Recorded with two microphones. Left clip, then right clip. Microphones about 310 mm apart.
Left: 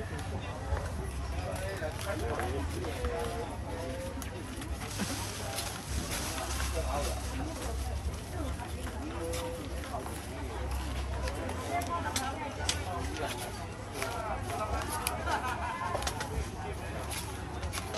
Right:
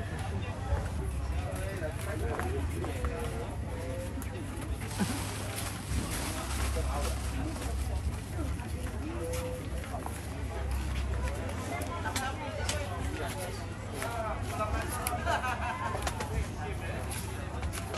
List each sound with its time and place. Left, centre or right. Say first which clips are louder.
15.2 s vehicle: right 3 dB; right